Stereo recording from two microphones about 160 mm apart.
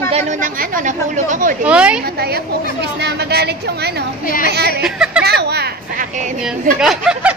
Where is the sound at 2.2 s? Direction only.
85° right.